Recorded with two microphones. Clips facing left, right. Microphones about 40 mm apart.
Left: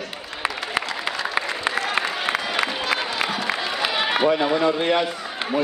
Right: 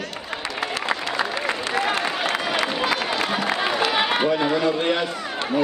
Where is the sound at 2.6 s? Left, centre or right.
Centre.